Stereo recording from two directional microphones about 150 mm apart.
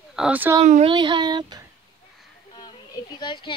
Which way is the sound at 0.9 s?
30° right (ahead or behind).